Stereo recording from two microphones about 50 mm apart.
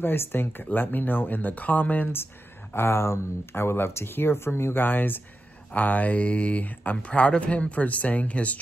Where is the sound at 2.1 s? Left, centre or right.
Left.